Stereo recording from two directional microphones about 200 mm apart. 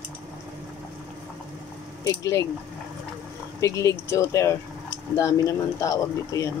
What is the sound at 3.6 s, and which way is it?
Speech, 15° left (ahead or behind).